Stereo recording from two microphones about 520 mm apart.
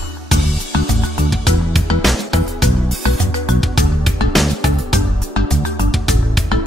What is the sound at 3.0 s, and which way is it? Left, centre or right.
Music, right.